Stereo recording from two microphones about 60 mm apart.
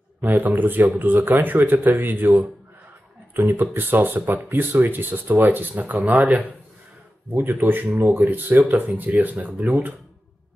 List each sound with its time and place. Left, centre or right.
0.2 s speech: right
3.3 s speech: right
7.3 s speech: right